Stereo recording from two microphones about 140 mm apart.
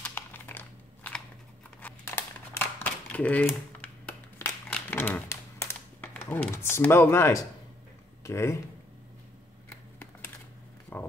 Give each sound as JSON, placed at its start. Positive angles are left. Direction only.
{"t": 0.0, "sound": "crumpling", "side_deg": 15}
{"t": 1.8, "sound": "a sound", "side_deg": 15}
{"t": 8.2, "sound": "a man's voice", "side_deg": 20}